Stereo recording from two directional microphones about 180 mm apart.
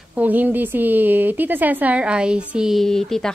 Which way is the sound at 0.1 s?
10° right (ahead or behind).